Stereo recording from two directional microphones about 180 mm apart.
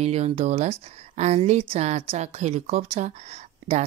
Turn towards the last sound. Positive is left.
turn(degrees=-35)  # may be behind; listen again after turning